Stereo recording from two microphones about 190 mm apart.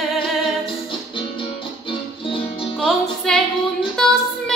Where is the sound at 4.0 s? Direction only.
Centre (ahead or behind).